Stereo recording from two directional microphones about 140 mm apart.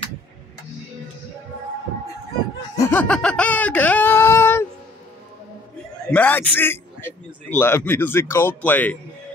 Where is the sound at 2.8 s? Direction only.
15° left (ahead or behind).